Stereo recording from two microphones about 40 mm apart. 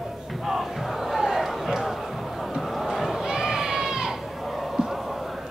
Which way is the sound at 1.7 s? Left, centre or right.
Centre.